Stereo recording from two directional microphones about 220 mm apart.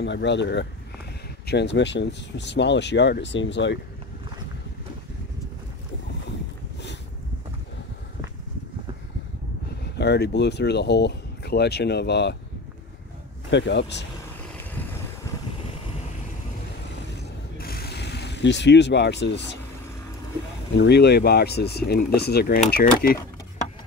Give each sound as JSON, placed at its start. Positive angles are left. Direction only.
{"t": 0.0, "sound": "speech", "side_deg": 55}
{"t": 9.9, "sound": "speech", "side_deg": 50}
{"t": 13.5, "sound": "speech", "side_deg": 50}
{"t": 17.6, "sound": "a sound", "side_deg": 45}
{"t": 20.7, "sound": "speech", "side_deg": 50}